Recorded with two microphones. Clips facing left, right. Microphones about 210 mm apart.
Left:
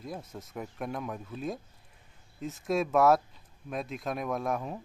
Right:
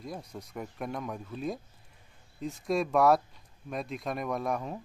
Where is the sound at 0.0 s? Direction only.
Centre (ahead or behind).